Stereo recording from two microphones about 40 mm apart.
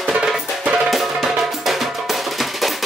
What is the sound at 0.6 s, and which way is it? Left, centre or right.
Music, right.